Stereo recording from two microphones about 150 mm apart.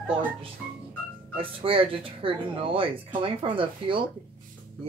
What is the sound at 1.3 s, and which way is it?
Speech, 35° right (ahead or behind).